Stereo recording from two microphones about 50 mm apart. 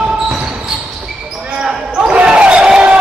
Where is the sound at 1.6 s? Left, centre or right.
Centre.